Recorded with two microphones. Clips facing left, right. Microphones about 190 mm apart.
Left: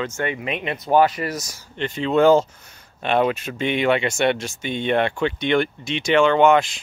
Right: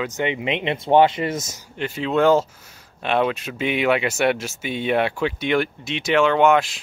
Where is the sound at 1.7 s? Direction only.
5° right (ahead or behind).